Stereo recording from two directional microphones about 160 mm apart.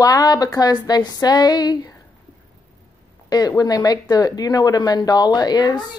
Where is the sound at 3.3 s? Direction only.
25° left (ahead or behind).